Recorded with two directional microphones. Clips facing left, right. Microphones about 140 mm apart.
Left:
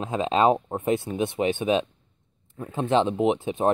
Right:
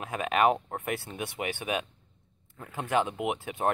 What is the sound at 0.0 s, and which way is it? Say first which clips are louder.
Speech: left 4 dB; 25° left (ahead or behind).